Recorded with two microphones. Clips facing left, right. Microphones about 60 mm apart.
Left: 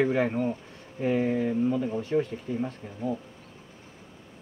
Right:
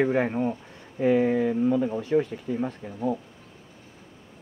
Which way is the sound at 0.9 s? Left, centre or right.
Right.